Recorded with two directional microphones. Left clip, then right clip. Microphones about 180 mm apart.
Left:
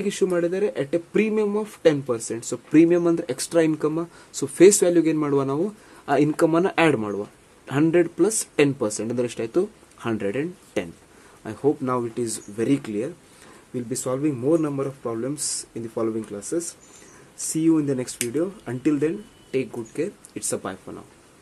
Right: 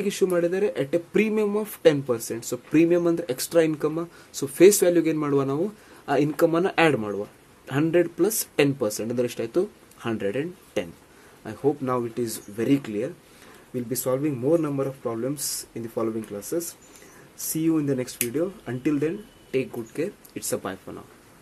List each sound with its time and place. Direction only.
0.0 s speech: 10° left (ahead or behind)